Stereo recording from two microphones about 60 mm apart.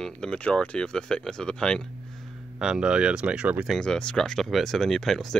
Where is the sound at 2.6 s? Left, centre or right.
Centre.